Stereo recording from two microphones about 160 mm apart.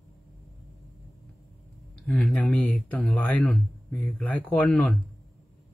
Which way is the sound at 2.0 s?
5° left (ahead or behind).